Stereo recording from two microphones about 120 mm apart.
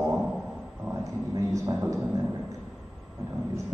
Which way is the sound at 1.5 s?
25° right (ahead or behind).